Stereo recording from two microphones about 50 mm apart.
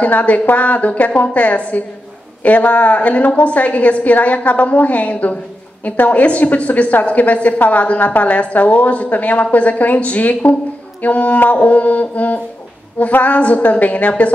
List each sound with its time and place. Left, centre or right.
0.0 s a woman's voice: left